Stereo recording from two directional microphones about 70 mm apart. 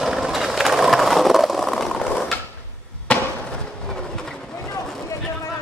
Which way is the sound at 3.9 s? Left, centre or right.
Centre.